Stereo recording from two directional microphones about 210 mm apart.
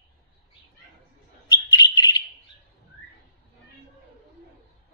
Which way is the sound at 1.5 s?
20° left (ahead or behind).